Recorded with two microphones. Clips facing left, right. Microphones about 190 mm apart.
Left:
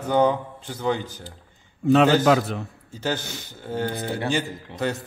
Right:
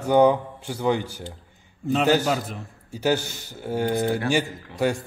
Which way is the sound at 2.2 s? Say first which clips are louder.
Left 6 dB; 90° left.